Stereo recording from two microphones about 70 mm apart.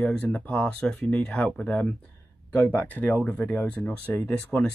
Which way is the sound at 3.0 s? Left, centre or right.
Centre.